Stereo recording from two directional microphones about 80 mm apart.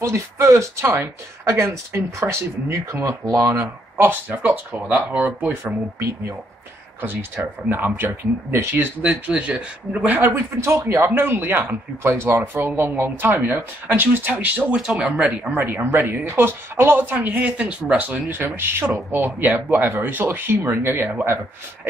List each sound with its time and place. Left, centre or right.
0.0 s speech: right
4.0 s speech: right
9.0 s speech: centre
10.2 s speech: right
14.7 s speech: centre
15.5 s speech: right